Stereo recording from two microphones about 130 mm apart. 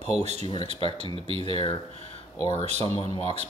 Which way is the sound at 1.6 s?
50° left (ahead or behind).